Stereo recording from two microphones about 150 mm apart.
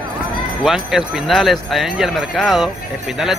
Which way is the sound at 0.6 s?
Centre (ahead or behind).